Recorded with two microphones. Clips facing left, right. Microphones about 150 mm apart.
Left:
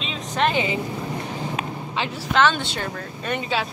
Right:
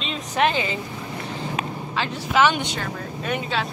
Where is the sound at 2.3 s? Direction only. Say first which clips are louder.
Even; 10° right (ahead or behind).